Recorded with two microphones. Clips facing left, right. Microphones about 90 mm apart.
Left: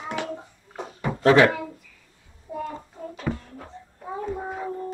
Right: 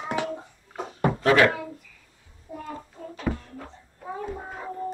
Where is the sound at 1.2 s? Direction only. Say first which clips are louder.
Left 3 dB; 25° left (ahead or behind).